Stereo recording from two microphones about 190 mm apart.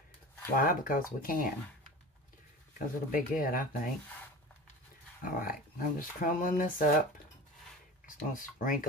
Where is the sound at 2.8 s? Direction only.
45° left (ahead or behind).